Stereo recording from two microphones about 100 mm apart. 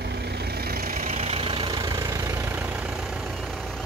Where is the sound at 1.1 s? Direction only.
90° right; by 2.9 s 15° right (ahead or behind).